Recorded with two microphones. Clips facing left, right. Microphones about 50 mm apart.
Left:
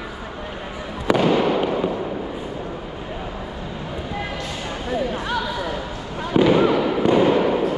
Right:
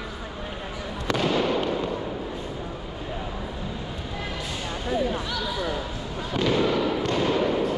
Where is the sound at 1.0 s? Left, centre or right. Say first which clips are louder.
Left 6 dB; centre.